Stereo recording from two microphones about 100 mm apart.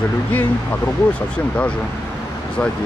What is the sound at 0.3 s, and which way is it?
Speech, 20° left (ahead or behind).